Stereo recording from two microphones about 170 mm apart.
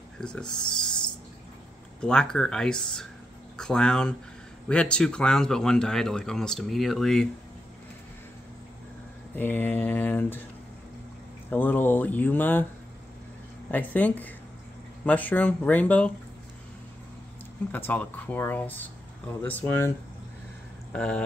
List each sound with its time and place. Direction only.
0.2 s speech: 5° left (ahead or behind)
2.0 s speech: 5° left (ahead or behind)
9.3 s speech: 10° left (ahead or behind)
11.5 s speech: 10° left (ahead or behind)
13.7 s speech: 10° left (ahead or behind)
17.6 s speech: 10° left (ahead or behind)
20.9 s speech: 5° left (ahead or behind)